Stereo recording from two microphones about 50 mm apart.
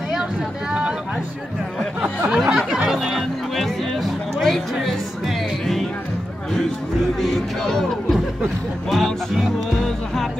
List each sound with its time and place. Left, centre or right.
0.1 s boat: centre
2.0 s a sound: centre
2.9 s music: centre
7.2 s chatter: centre
8.9 s music: centre